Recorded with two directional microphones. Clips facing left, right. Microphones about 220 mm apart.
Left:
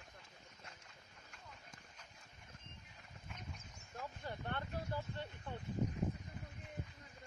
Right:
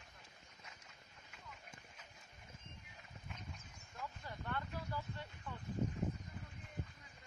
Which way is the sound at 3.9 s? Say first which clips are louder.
Left 3 dB; 30° left (ahead or behind).